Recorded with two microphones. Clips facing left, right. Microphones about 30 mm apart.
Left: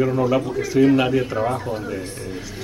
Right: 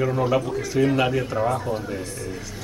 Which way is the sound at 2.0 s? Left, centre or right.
Left.